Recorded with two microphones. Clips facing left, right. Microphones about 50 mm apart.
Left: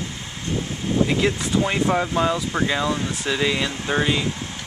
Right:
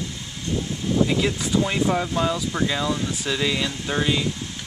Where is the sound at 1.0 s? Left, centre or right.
Centre.